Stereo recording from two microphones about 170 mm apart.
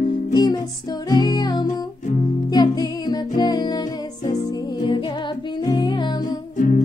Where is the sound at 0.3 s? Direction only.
25° left (ahead or behind).